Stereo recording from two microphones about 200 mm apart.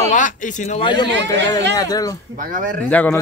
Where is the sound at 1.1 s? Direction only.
65° right (ahead or behind).